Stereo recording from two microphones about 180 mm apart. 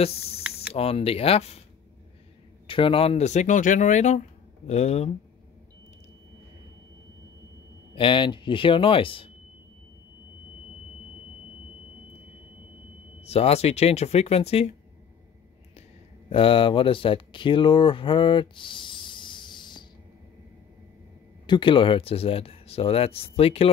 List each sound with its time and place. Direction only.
0.0 s speech: 35° left (ahead or behind)
2.6 s speech: 30° left (ahead or behind)
7.9 s speech: 30° left (ahead or behind)
13.2 s speech: 35° left (ahead or behind)
16.3 s speech: 30° left (ahead or behind)
21.5 s speech: 25° left (ahead or behind)